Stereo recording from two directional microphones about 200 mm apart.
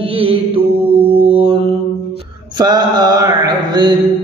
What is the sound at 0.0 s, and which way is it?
Mantra, 25° right (ahead or behind).